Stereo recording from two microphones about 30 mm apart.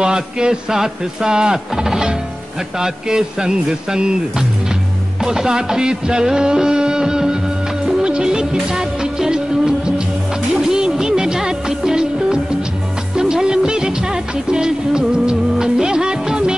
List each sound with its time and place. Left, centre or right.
0.0 s a man's voice: right
5.2 s music: centre